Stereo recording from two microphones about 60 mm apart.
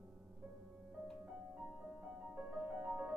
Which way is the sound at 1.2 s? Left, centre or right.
Centre.